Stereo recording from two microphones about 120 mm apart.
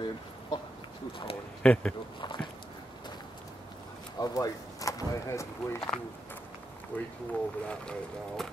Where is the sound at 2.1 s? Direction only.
40° left (ahead or behind).